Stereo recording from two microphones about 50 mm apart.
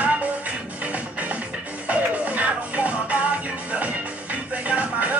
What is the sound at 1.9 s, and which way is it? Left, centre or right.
Music, right.